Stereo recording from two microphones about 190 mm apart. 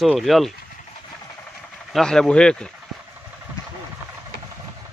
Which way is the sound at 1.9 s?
5° left (ahead or behind).